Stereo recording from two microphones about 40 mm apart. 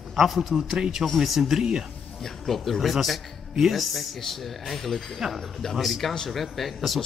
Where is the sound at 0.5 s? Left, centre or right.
Centre.